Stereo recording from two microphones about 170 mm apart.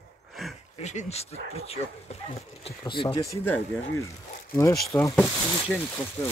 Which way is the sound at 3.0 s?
20° left (ahead or behind).